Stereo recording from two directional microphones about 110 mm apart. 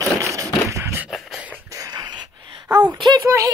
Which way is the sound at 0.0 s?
30° right (ahead or behind).